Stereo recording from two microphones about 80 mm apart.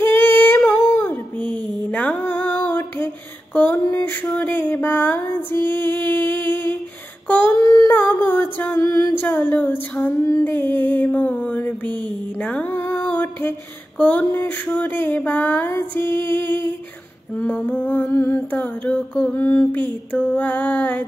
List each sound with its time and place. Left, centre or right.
0.0 s female singing: left
0.9 s music: left
2.2 s music: left
3.5 s a sound: left
7.5 s a sound: left
7.9 s music: left
8.8 s music: left
9.2 s mantra: left
12.4 s music: centre
17.4 s mantra: left
18.6 s a sound: centre
19.4 s mantra: left